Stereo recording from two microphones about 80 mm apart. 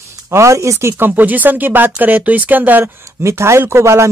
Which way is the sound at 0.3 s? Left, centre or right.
Right.